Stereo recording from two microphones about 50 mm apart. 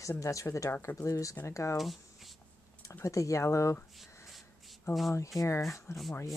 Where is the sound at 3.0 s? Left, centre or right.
Left.